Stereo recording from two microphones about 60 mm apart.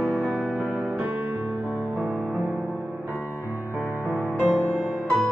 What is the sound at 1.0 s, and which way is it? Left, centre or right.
Music, right.